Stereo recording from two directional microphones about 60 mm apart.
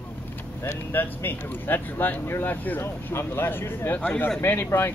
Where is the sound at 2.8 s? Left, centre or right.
Left.